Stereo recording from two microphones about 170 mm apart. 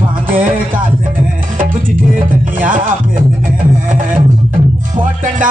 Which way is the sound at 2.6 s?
50° right (ahead or behind).